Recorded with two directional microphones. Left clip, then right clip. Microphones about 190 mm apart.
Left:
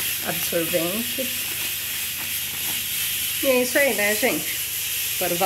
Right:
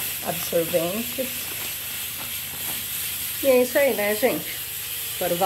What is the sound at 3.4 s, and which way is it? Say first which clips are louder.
Speech: right 1 dB; 5° left (ahead or behind).